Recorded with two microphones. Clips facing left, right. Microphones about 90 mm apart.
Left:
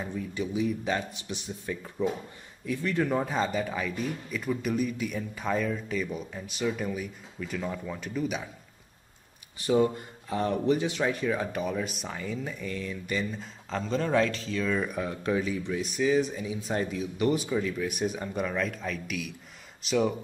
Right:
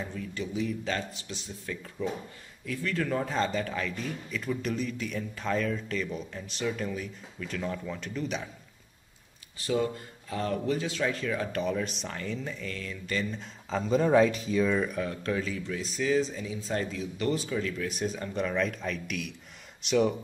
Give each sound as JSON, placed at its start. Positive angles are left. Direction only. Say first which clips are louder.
{"t": 0.0, "sound": "a man's voice", "louder": "left 3 dB", "side_deg": 15}
{"t": 9.7, "sound": "speech", "louder": "left 4 dB", "side_deg": 20}
{"t": 11.6, "sound": "a man's voice", "louder": "right 1 dB", "side_deg": 5}
{"t": 13.4, "sound": "speech", "louder": "right 1 dB", "side_deg": 0}
{"t": 15.0, "sound": "a man's voice", "louder": "left 2 dB", "side_deg": 15}